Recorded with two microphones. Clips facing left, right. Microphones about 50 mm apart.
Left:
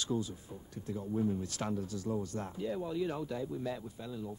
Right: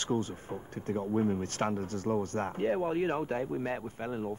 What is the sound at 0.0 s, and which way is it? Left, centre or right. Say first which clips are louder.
Speech: right 4 dB; right.